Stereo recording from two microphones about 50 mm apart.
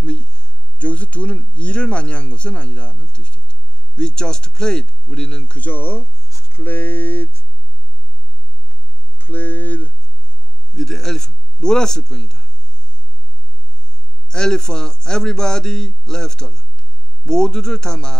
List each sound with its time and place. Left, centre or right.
0.0 s speech: centre; by 6.0 s left
6.2 s a sound: left
6.5 s speech: left
9.2 s speech: left
10.8 s a man's voice: centre
14.3 s a man's voice: centre